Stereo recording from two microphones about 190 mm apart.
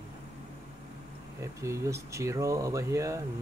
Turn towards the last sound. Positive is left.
turn(degrees=-15)  # may be behind; listen again after turning